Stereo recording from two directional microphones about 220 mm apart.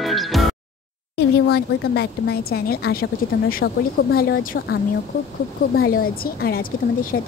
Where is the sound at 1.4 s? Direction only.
45° left (ahead or behind).